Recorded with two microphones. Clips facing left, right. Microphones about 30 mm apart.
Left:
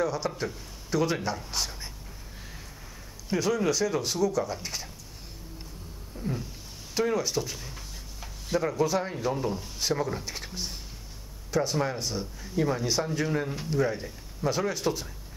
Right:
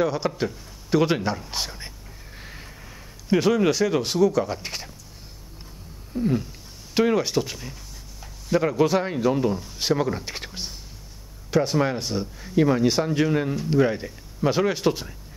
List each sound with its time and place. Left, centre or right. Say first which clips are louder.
0.0 s speech: right 5 dB; right
3.3 s speech: right 7 dB; right
6.1 s speech: right 10 dB; right
8.7 s speech: right 6 dB; right
9.1 s speech: right 7 dB; right